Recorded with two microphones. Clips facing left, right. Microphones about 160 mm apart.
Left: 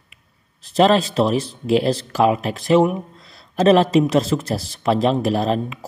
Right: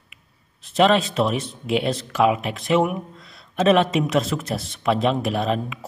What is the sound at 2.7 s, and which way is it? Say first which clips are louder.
Speech: left 4 dB; 35° left (ahead or behind).